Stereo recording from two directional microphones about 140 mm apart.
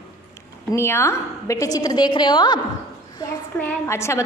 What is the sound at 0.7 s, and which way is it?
A woman's voice, 20° left (ahead or behind).